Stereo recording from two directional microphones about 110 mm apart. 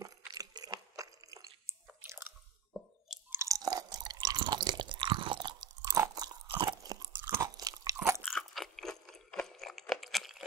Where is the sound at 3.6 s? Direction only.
40° right (ahead or behind).